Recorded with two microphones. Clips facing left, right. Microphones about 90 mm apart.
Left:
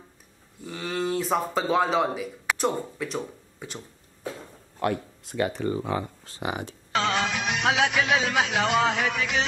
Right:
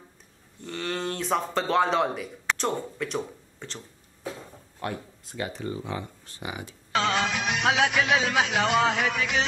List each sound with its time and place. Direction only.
0.6 s speech: 5° left (ahead or behind)
4.7 s speech: 70° left (ahead or behind); by 6.0 s 50° left (ahead or behind)
6.9 s speech: centre (ahead or behind)